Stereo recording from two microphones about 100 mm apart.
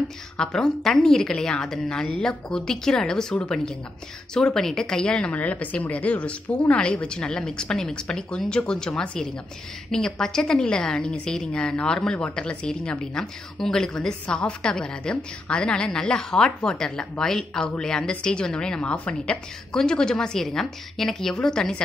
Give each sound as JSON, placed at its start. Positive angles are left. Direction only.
{"t": 0.4, "sound": "a woman's voice", "side_deg": 5}